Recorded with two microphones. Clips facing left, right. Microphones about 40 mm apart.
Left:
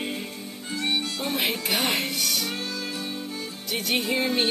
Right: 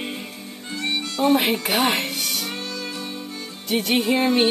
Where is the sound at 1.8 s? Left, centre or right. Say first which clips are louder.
Right 4 dB; centre.